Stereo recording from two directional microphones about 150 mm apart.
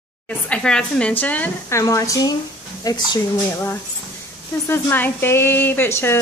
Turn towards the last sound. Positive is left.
turn(degrees=15)  # may be behind; listen again after turning